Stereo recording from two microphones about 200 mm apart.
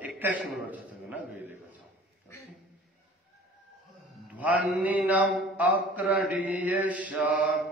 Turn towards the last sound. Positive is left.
turn(degrees=-5)  # may be behind; listen again after turning